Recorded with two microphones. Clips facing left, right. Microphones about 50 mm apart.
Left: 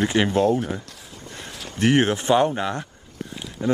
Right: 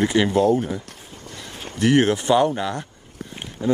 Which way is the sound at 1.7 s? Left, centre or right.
Left.